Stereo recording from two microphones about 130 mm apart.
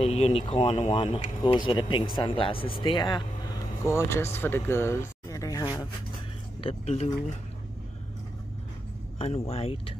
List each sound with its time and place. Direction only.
0.0 s speech: 55° left (ahead or behind); by 3.3 s 35° left (ahead or behind)
3.8 s speech: 20° left (ahead or behind)
4.4 s a sound: 15° left (ahead or behind)
6.6 s speech: 50° left (ahead or behind)
9.2 s speech: 50° left (ahead or behind)